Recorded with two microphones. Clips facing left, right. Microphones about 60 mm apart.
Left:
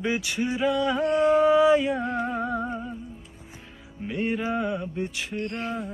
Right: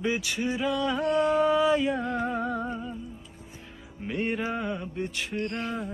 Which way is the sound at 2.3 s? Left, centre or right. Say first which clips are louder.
Left 1 dB; centre.